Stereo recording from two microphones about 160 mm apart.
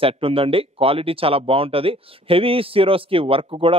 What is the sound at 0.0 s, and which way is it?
Speech, 35° right (ahead or behind).